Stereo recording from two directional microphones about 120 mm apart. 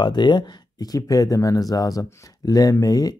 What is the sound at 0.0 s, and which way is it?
Speech, 40° left (ahead or behind).